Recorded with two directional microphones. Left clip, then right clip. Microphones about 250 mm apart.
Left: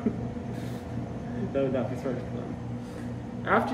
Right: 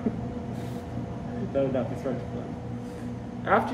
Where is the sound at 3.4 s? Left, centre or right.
Centre.